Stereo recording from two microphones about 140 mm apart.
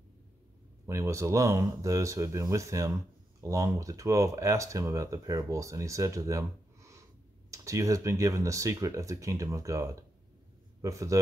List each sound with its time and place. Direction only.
0.8 s a man's voice: 20° right (ahead or behind)